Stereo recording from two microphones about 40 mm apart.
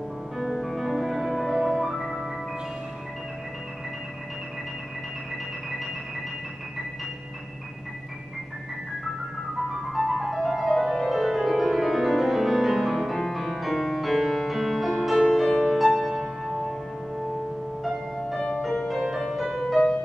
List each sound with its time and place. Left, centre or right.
0.4 s music: centre
9.9 s music: centre
18.1 s music: centre